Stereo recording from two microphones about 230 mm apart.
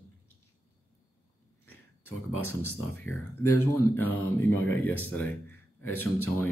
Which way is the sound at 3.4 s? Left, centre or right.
Left.